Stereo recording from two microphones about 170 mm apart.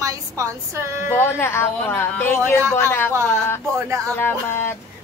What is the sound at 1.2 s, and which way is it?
A woman's voice, 15° left (ahead or behind).